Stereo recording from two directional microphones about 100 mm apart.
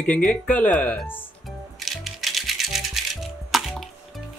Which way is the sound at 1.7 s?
Centre (ahead or behind).